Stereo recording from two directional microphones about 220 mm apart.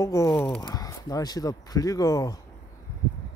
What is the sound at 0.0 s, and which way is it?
Speech, 15° left (ahead or behind).